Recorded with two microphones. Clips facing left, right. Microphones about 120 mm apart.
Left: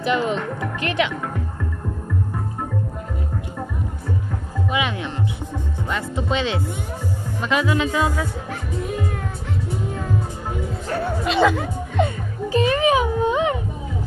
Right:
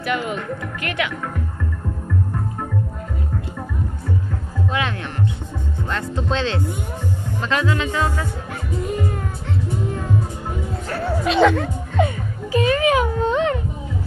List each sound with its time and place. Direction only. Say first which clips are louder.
0.0 s speech: left 3 dB; 30° left (ahead or behind)
4.6 s speech: left 1 dB; 15° left (ahead or behind)
5.9 s music: even; 10° left (ahead or behind)
11.1 s music: right 3 dB; centre (ahead or behind)
12.4 s a sound: even; 25° left (ahead or behind)